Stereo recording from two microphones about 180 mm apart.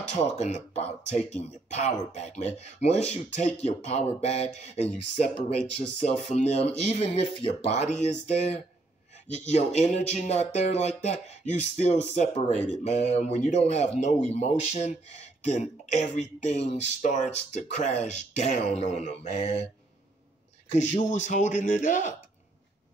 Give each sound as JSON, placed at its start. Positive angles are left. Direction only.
{"t": 0.1, "sound": "speech", "side_deg": 40}
{"t": 20.7, "sound": "speech", "side_deg": 40}